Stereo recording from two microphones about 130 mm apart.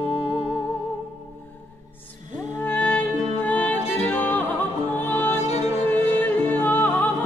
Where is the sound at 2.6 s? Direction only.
10° left (ahead or behind).